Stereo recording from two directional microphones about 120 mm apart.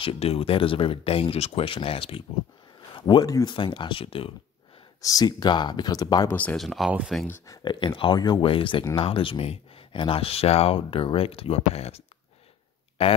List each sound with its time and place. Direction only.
0.0 s speech: 55° left (ahead or behind)
5.0 s speech: 35° left (ahead or behind)
6.3 s speech: 10° left (ahead or behind)
6.6 s speech: centre (ahead or behind)
7.6 s speech: 40° left (ahead or behind); by 12.0 s 60° left (ahead or behind)
13.0 s speech: 50° left (ahead or behind)